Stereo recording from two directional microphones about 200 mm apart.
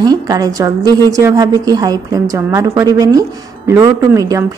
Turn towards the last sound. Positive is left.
turn(degrees=-15)  # may be behind; listen again after turning